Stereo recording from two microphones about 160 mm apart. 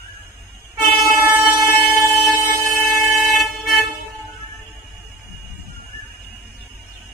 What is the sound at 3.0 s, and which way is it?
Vehicle, centre (ahead or behind).